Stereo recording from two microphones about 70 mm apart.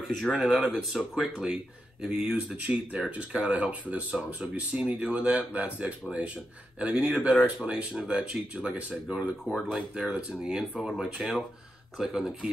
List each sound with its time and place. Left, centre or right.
0.1 s speech: centre